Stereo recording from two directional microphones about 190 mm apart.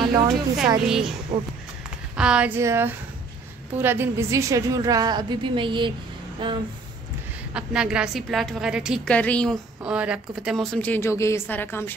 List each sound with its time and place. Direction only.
0.0 s a sound: 20° right (ahead or behind)
0.8 s a woman's voice: 5° right (ahead or behind)
2.1 s a woman's voice: 5° right (ahead or behind); by 6.6 s 25° right (ahead or behind)
7.5 s a woman's voice: 5° right (ahead or behind); by 11.9 s 10° left (ahead or behind)